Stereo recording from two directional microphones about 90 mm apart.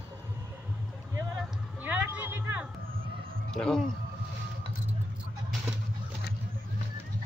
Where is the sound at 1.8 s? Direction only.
20° right (ahead or behind).